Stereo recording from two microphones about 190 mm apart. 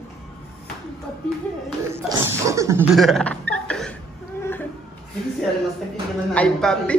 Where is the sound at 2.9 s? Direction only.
Centre (ahead or behind).